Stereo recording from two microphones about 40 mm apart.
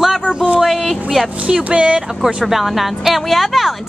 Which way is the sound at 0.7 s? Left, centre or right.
Centre.